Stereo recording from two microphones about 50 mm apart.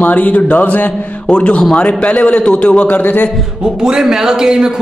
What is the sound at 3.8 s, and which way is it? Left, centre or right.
Speech, centre.